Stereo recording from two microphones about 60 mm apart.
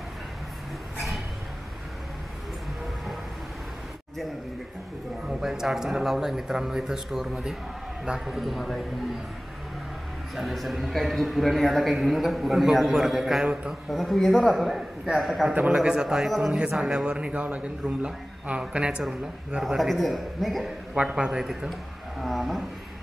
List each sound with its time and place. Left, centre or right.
5.4 s a man's voice: centre
10.3 s a man's voice: centre
15.5 s a man's voice: right
15.8 s a man's voice: centre
16.5 s a man's voice: centre
19.6 s a man's voice: centre
20.9 s a man's voice: centre